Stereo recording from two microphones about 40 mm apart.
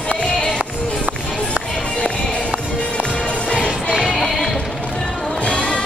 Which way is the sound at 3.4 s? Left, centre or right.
Centre.